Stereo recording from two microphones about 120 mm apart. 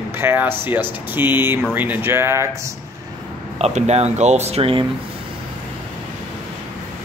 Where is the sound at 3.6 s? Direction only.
60° right (ahead or behind).